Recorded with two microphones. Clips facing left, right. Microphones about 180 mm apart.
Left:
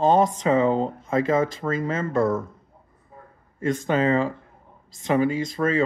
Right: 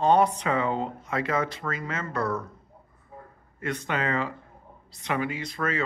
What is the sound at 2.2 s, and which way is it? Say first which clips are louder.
Speech: left 7 dB; 45° left (ahead or behind).